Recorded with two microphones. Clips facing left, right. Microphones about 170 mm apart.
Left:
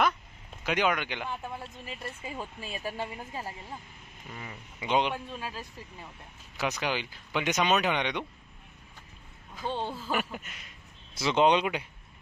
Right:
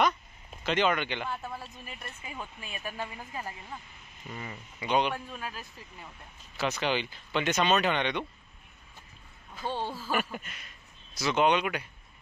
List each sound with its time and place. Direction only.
0.7 s speech: 10° left (ahead or behind)
1.9 s speech: 30° left (ahead or behind)
4.3 s speech: centre (ahead or behind)
4.8 s speech: 20° left (ahead or behind)
6.8 s speech: 10° left (ahead or behind)
9.6 s speech: 5° right (ahead or behind)
10.3 s speech: 5° left (ahead or behind)
11.1 s speech: 25° left (ahead or behind)